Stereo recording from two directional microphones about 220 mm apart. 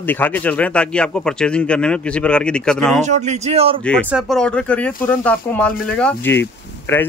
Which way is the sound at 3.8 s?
5° left (ahead or behind).